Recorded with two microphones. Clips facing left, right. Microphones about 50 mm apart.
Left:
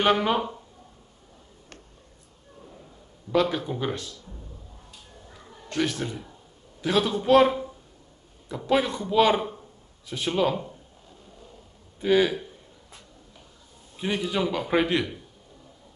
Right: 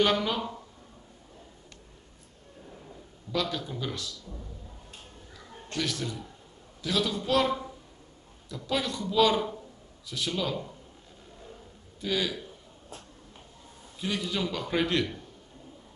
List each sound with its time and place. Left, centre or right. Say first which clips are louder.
0.0 s speech: left 4 dB; left
3.3 s a man's voice: left 7 dB; left
5.7 s a man's voice: left 5 dB; left
12.0 s a man's voice: left 9 dB; left
13.9 s a man's voice: left 5 dB; left